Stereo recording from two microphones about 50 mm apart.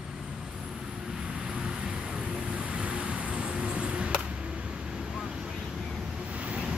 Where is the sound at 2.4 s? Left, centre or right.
Right.